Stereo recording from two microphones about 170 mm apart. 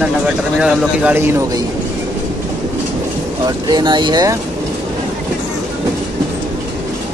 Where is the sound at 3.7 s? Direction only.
25° right (ahead or behind).